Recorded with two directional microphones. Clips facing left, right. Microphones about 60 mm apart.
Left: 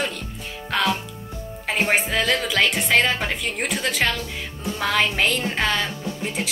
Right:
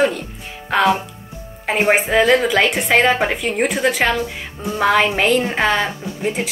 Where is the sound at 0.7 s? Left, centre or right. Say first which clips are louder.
Right 7 dB; centre.